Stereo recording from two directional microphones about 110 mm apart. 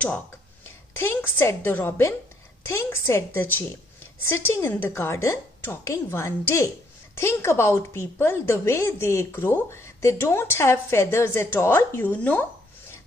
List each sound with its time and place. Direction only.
0.9 s a woman's voice: 20° left (ahead or behind)